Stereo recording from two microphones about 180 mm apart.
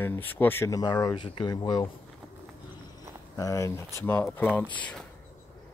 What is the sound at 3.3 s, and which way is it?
Speech, 20° left (ahead or behind).